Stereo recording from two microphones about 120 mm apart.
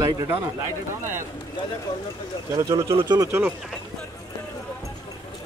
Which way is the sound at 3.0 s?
35° right (ahead or behind).